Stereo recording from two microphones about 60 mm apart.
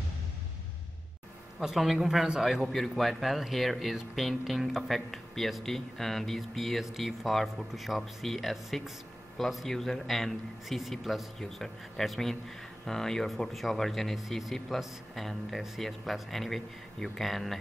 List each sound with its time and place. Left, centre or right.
1.6 s a man's voice: centre